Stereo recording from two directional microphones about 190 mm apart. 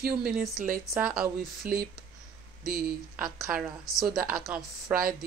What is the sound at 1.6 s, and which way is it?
Speech, 50° right (ahead or behind).